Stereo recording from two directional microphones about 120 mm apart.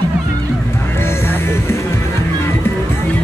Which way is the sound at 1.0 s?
20° left (ahead or behind).